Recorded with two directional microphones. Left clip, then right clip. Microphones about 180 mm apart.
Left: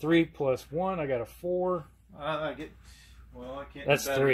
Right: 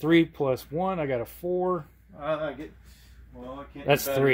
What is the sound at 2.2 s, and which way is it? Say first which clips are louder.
Speech: right 3 dB; centre (ahead or behind).